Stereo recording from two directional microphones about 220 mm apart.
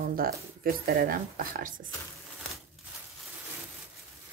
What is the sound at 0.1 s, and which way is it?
Speech, 40° right (ahead or behind).